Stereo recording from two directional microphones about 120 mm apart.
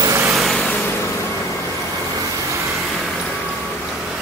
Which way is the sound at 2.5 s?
25° right (ahead or behind).